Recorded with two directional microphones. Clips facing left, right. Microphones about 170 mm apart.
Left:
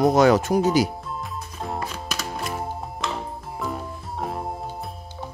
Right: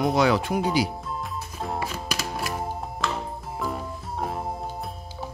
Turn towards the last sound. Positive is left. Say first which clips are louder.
# even
turn(degrees=0)  # may be behind; listen again after turning